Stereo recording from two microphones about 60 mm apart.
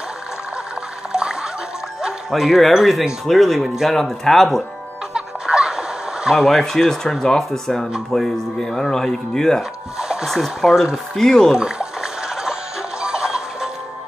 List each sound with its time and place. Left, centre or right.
1.1 s music: centre
2.0 s speech: centre
5.1 s a sound: centre
8.1 s speech: centre
9.6 s a sound: centre
10.3 s speech: centre
10.7 s speech: centre
11.1 s speech: centre
11.5 s speech: centre
13.0 s music: centre